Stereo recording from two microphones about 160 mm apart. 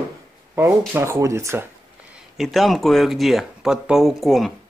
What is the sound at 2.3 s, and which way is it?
Speech, centre (ahead or behind).